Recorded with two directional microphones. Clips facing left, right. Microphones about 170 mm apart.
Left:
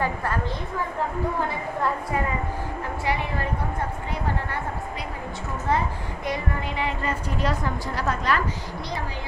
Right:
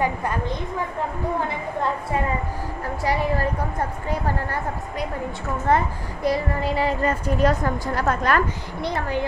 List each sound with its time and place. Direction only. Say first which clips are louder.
0.0 s a woman's voice: right 2 dB; 20° right (ahead or behind)
3.0 s a woman's voice: right 6 dB; 40° right (ahead or behind)
5.7 s a woman's voice: right 4 dB; 55° right (ahead or behind)
6.2 s a woman's voice: right 7 dB; 35° right (ahead or behind); by 9.2 s 60° right (ahead or behind)